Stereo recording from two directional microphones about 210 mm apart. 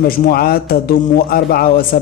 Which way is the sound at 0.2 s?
45° left (ahead or behind).